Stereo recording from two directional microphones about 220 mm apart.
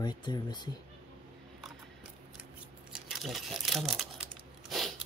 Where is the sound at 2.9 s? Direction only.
Centre (ahead or behind).